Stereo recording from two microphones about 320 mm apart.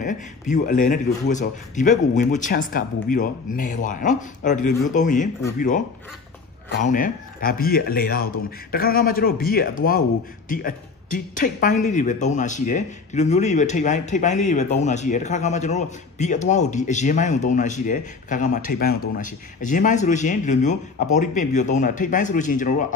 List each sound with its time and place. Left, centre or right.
0.0 s speech: left
6.8 s speech: left